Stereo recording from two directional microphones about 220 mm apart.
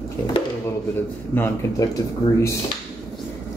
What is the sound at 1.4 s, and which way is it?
Speech, 15° left (ahead or behind).